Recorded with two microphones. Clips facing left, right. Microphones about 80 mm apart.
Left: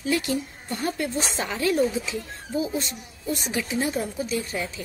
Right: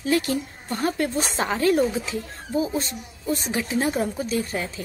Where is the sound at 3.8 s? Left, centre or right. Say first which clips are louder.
Right 3 dB; right.